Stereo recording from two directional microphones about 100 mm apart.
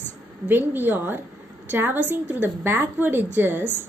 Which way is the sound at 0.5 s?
20° right (ahead or behind).